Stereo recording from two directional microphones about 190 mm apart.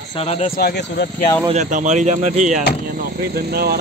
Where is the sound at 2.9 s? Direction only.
55° right (ahead or behind).